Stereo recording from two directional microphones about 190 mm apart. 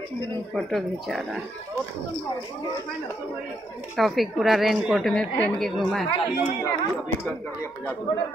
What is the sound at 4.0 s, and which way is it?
Speech, centre (ahead or behind).